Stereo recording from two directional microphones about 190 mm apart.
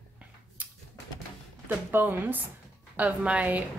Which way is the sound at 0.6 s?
10° right (ahead or behind).